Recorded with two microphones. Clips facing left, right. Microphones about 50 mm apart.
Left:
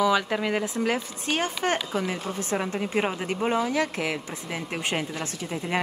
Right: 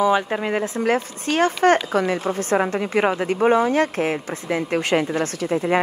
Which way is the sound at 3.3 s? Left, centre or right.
Right.